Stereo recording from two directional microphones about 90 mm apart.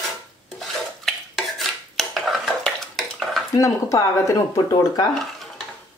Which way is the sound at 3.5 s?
40° left (ahead or behind).